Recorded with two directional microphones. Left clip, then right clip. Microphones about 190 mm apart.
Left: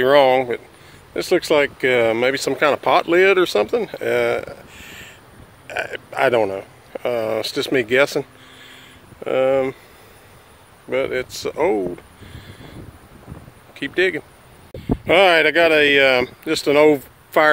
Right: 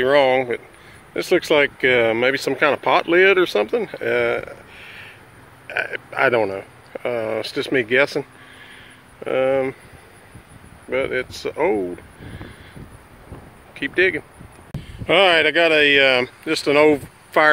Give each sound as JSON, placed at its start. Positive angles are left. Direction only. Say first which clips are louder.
{"t": 0.0, "sound": "speech", "louder": "left 2 dB", "side_deg": 20}
{"t": 10.9, "sound": "speech", "louder": "left 1 dB", "side_deg": 15}
{"t": 13.7, "sound": "speech", "louder": "right 1 dB", "side_deg": 10}